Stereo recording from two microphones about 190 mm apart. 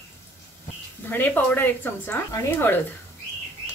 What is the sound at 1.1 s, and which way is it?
Stir, 10° left (ahead or behind).